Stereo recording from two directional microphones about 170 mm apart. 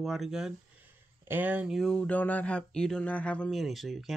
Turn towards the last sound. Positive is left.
turn(degrees=0)  # may be behind; listen again after turning